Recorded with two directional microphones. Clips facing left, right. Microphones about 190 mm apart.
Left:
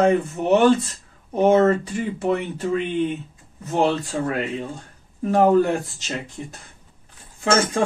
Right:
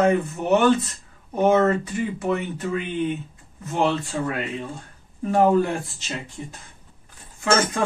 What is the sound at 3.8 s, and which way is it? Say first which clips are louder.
Speech: left 1 dB; 35° left (ahead or behind).